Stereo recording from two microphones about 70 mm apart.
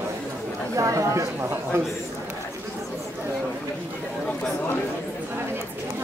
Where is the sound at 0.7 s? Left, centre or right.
Right.